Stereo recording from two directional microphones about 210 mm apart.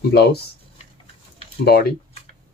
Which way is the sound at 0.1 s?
50° left (ahead or behind).